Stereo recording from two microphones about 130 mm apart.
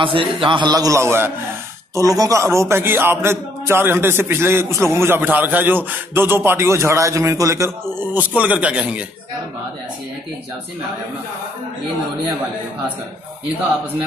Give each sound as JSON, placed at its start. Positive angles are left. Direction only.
{"t": 0.0, "sound": "a man's voice", "side_deg": -40}